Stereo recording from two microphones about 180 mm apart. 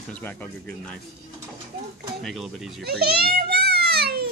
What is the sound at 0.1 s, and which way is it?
Speech, 10° left (ahead or behind).